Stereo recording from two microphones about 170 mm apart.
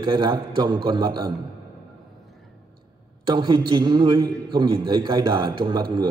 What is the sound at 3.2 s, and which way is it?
A man's voice, 25° right (ahead or behind).